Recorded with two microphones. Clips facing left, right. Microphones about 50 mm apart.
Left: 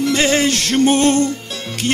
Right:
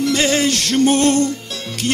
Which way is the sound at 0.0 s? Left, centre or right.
Left.